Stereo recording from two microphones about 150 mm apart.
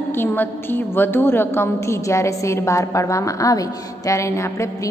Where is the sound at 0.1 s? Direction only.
15° left (ahead or behind).